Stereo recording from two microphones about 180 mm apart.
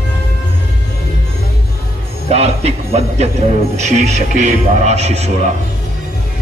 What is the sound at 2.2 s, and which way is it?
Speech, 35° right (ahead or behind).